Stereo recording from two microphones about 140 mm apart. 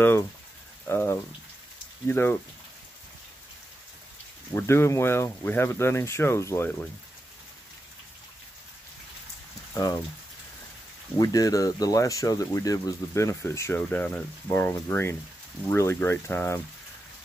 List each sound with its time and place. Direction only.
0.8 s speech: 15° left (ahead or behind)
4.6 s speech: 20° left (ahead or behind)
9.8 s speech: 30° left (ahead or behind)
11.1 s speech: 25° left (ahead or behind)